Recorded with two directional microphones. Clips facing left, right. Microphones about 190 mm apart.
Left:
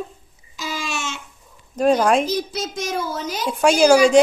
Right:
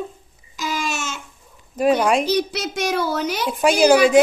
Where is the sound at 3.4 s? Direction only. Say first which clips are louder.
Left 1 dB; centre (ahead or behind).